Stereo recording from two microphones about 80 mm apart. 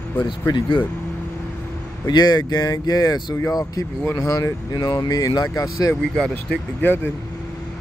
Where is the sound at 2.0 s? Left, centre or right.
Left.